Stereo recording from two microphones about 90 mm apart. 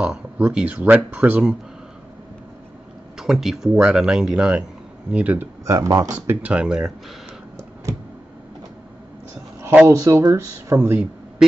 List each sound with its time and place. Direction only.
0.0 s speech: 15° right (ahead or behind)
3.2 s speech: 5° right (ahead or behind)
5.7 s speech: 40° right (ahead or behind)
6.2 s speech: 15° right (ahead or behind)
9.8 s speech: 40° right (ahead or behind)
10.7 s a man's voice: 25° right (ahead or behind)